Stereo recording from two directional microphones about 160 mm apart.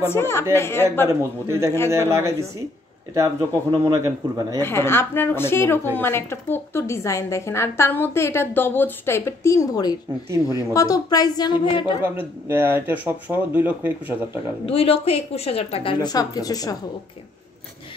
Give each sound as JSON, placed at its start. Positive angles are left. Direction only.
{"t": 0.0, "sound": "a woman's voice", "side_deg": 15}
{"t": 1.0, "sound": "speech", "side_deg": -15}
{"t": 4.6, "sound": "a woman's voice", "side_deg": 15}
{"t": 12.0, "sound": "speech", "side_deg": -10}
{"t": 14.7, "sound": "speech", "side_deg": 35}